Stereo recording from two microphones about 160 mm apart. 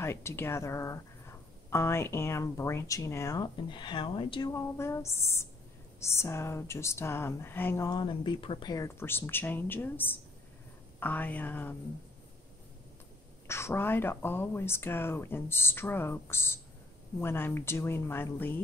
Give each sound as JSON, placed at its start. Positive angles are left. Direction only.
{"t": 0.0, "sound": "speech", "side_deg": 15}
{"t": 3.6, "sound": "speech", "side_deg": 30}
{"t": 4.5, "sound": "speech", "side_deg": 15}
{"t": 13.5, "sound": "speech", "side_deg": 15}